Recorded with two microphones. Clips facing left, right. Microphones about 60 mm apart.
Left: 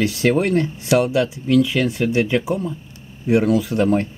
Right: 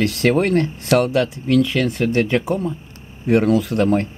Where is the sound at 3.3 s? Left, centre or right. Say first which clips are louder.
Right 1 dB; right.